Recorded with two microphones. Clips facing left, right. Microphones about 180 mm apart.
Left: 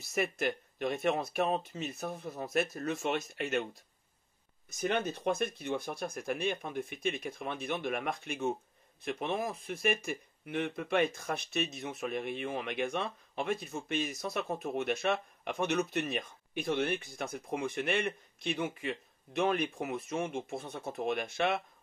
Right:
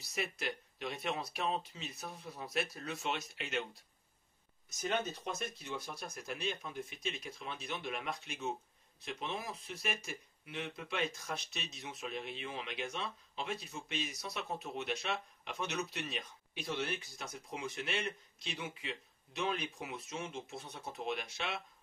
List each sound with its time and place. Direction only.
0.0 s speech: 50° left (ahead or behind)
4.6 s speech: 60° left (ahead or behind)